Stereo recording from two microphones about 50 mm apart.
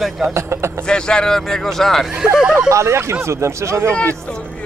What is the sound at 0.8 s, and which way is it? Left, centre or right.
Speech, centre.